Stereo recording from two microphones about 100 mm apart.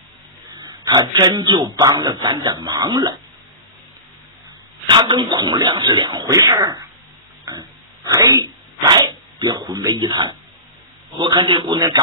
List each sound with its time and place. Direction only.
0.8 s speech: 45° right (ahead or behind)
4.8 s speech: 50° right (ahead or behind)
8.1 s speech: 35° right (ahead or behind)
8.8 s speech: 45° right (ahead or behind)
11.7 s speech: 35° right (ahead or behind)